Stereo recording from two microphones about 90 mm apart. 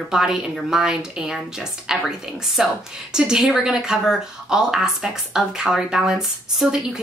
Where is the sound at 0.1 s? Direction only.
5° right (ahead or behind).